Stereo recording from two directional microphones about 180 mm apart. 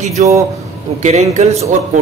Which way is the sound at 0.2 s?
40° right (ahead or behind).